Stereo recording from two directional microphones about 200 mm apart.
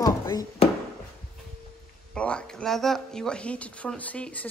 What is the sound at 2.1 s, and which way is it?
Speech, 5° left (ahead or behind).